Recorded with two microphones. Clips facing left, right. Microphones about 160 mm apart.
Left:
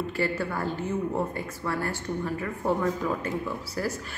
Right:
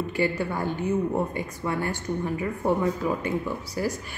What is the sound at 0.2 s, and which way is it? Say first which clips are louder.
A woman's voice: right 3 dB; 15° right (ahead or behind).